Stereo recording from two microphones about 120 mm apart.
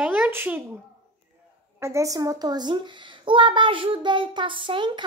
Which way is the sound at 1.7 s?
25° right (ahead or behind).